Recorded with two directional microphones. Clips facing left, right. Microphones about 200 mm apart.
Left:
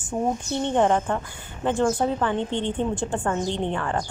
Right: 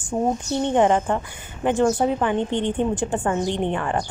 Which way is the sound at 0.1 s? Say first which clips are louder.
Right 3 dB; 40° right (ahead or behind).